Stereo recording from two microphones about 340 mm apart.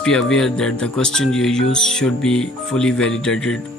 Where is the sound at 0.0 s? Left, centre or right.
Centre.